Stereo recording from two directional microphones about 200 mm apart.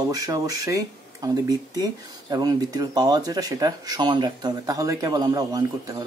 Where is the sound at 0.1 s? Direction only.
15° right (ahead or behind).